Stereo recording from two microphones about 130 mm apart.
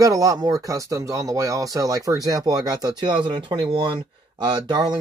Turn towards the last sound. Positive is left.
turn(degrees=-35)  # may be behind; listen again after turning